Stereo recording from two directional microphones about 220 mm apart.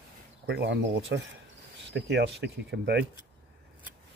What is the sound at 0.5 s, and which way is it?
Speech, 50° right (ahead or behind).